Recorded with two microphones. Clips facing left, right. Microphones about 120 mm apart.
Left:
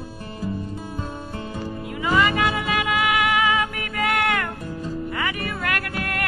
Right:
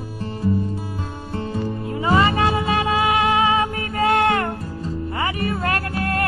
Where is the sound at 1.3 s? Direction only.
30° right (ahead or behind).